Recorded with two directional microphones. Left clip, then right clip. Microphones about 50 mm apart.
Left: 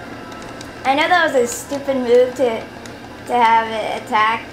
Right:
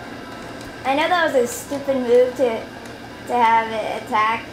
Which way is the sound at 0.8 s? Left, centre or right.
Centre.